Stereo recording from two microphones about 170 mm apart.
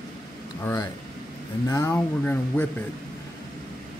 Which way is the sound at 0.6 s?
15° left (ahead or behind).